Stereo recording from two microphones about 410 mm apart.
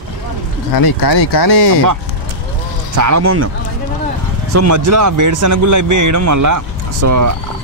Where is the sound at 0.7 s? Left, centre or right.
Left.